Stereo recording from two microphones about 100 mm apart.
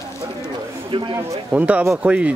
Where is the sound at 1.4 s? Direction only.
15° right (ahead or behind).